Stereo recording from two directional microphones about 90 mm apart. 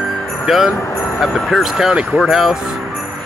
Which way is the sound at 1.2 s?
Centre (ahead or behind).